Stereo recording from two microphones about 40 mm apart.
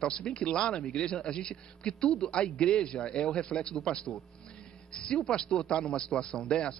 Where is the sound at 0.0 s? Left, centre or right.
Centre.